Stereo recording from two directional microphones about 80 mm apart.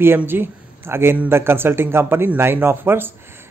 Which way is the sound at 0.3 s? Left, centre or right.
Right.